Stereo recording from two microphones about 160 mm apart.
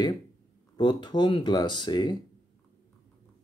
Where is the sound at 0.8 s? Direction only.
30° left (ahead or behind).